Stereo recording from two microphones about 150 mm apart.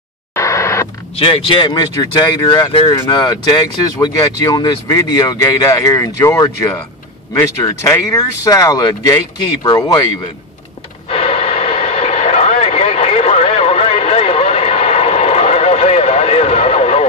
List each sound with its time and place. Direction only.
0.3 s a sound: 20° left (ahead or behind)
1.1 s speech: 40° left (ahead or behind); by 10.0 s 25° left (ahead or behind)
11.1 s vehicle: 40° left (ahead or behind)